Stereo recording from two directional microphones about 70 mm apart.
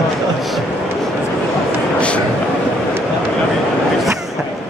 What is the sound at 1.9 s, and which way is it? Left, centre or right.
Train, centre.